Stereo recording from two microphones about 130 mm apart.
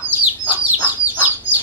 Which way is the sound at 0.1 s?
15° right (ahead or behind).